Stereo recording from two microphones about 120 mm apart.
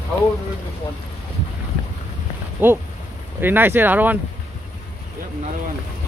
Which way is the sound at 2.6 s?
15° right (ahead or behind).